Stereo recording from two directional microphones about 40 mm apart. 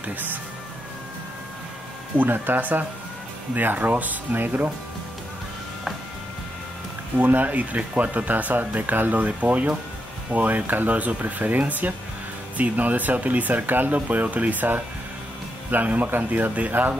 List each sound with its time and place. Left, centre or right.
0.0 s speech: right
2.1 s speech: right
7.2 s speech: right